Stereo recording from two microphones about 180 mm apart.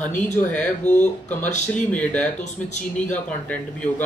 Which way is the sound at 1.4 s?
40° left (ahead or behind).